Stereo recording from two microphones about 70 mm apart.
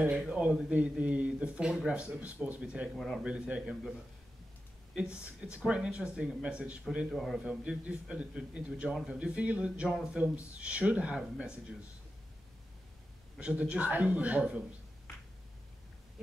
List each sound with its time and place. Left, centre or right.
0.1 s a man's voice: centre
2.9 s speech: centre
3.3 s speech: centre
4.9 s speech: centre
7.1 s speech: centre
7.3 s speech: centre
13.4 s speech: centre